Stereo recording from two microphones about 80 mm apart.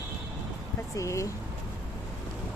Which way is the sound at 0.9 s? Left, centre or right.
Left.